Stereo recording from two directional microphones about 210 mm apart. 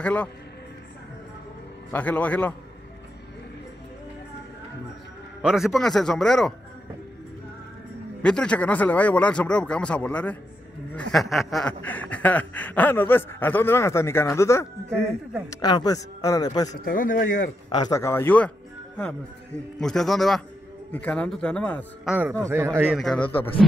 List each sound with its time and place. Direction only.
0.0 s speech: 5° left (ahead or behind)
1.9 s a sound: 10° left (ahead or behind)
5.4 s speech: centre (ahead or behind)
8.2 s speech: 5° left (ahead or behind)
11.0 s a sound: 5° left (ahead or behind)
16.8 s speech: 40° left (ahead or behind)
17.6 s a sound: 20° left (ahead or behind)
19.8 s speech: centre (ahead or behind)
22.1 s a man's voice: 10° right (ahead or behind)